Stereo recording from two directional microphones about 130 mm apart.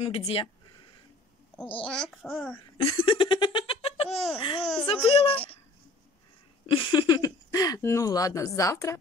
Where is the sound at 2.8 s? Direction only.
35° left (ahead or behind).